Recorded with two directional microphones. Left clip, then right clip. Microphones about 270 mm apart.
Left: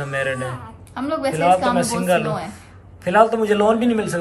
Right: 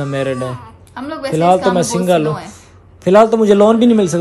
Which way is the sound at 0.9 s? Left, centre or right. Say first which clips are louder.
Right 2 dB; centre.